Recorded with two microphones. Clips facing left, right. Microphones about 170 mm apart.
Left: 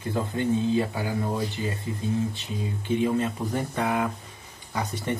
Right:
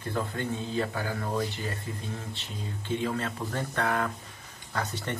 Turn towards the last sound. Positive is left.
turn(degrees=15)  # may be behind; listen again after turning